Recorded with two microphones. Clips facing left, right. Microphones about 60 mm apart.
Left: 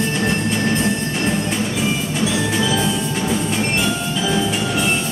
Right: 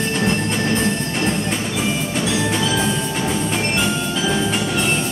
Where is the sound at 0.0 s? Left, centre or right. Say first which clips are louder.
Even; centre.